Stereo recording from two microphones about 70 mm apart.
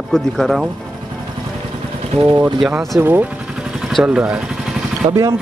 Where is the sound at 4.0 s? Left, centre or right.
Centre.